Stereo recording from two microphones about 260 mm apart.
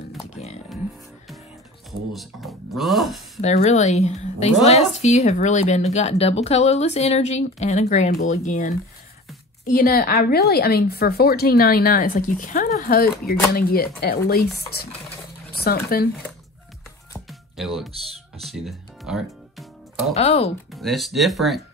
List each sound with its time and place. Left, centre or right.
1.9 s speech: centre
3.3 s a woman's voice: left
15.5 s speech: left
17.3 s music: centre
20.2 s a woman's voice: left
20.7 s speech: centre